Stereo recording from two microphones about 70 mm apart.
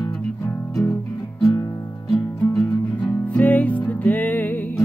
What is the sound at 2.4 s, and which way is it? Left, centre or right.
Music, centre.